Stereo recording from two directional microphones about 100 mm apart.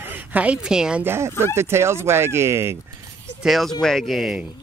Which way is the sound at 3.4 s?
Centre (ahead or behind).